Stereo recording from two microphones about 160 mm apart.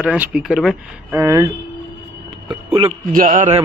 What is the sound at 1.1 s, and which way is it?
Speech, 20° right (ahead or behind).